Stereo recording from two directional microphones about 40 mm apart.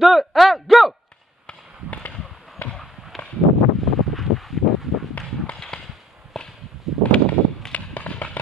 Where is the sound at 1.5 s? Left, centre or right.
Left.